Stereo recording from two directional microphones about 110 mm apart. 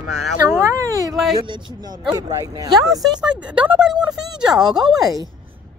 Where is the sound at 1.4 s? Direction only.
40° right (ahead or behind).